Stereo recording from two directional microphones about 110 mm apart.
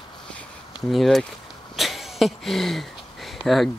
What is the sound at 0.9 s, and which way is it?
Speech, centre (ahead or behind).